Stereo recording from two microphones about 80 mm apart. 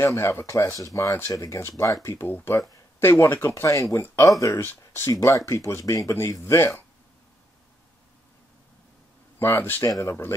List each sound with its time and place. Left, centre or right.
0.0 s speech: left
3.6 s speech: left
4.6 s speech: left
9.4 s speech: left
9.8 s speech: left